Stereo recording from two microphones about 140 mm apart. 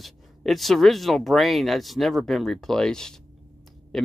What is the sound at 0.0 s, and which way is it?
Speech, centre (ahead or behind).